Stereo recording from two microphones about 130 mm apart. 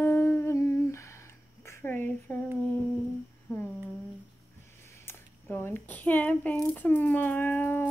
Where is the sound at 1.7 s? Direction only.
15° left (ahead or behind).